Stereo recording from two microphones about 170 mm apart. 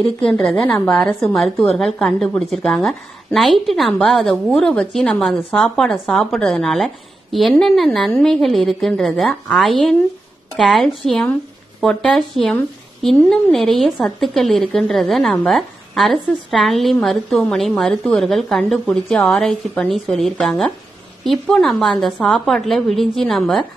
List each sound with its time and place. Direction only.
0.2 s a woman's voice: 5° left (ahead or behind)